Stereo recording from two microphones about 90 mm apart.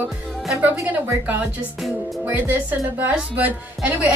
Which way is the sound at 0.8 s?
20° right (ahead or behind).